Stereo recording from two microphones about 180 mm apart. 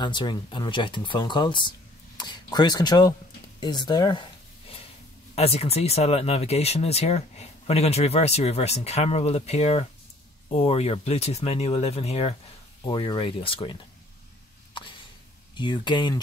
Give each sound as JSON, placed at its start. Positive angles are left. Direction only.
{"t": 0.0, "sound": "speech", "side_deg": 25}
{"t": 3.6, "sound": "a sound", "side_deg": 25}
{"t": 5.3, "sound": "speech", "side_deg": 35}
{"t": 15.5, "sound": "speech", "side_deg": 25}